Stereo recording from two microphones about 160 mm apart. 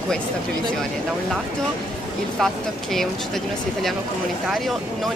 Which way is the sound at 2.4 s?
5° left (ahead or behind).